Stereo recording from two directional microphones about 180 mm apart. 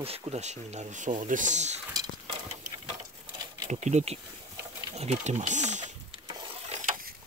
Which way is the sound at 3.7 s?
40° right (ahead or behind).